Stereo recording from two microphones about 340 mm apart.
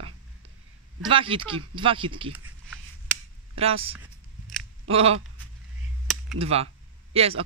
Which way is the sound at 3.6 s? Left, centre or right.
Centre.